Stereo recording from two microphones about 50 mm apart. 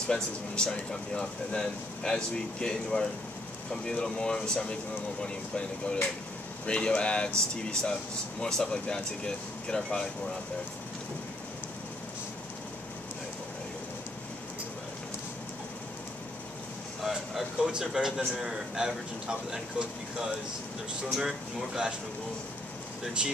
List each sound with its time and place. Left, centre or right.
0.1 s speech: centre
17.4 s a man's voice: centre